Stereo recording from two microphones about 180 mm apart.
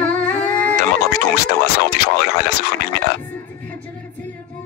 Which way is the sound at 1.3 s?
65° left (ahead or behind).